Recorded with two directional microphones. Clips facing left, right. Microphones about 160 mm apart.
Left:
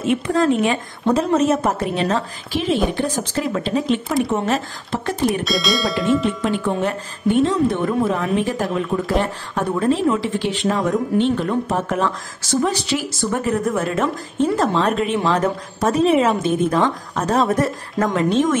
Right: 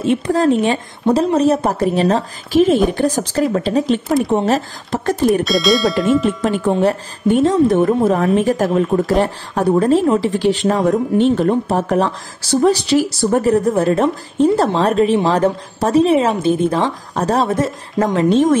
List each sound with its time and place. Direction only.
0.0 s speech: 35° right (ahead or behind)
5.4 s speech: centre (ahead or behind)
6.7 s a woman's voice: 40° right (ahead or behind)